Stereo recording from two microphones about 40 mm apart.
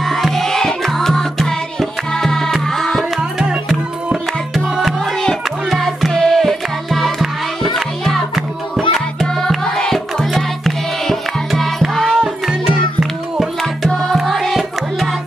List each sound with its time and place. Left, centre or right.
0.0 s music: centre
3.2 s music: centre
5.7 s music: centre
6.4 s music: centre
14.1 s music: centre